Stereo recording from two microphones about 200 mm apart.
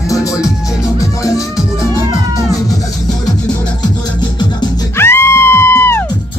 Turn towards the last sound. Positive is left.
turn(degrees=10)  # may be behind; listen again after turning